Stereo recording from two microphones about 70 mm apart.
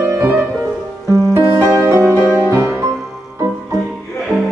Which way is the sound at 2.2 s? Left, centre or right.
Right.